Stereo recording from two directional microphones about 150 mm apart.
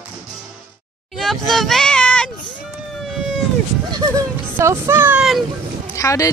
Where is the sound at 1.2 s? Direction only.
Centre (ahead or behind).